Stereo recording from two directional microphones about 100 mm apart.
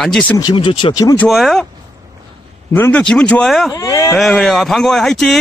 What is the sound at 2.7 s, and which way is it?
Speech, 20° left (ahead or behind).